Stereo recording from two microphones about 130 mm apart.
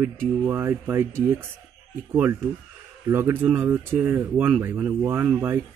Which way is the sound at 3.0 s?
20° right (ahead or behind).